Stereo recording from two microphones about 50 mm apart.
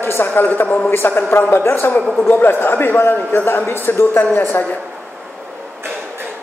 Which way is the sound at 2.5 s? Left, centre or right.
Left.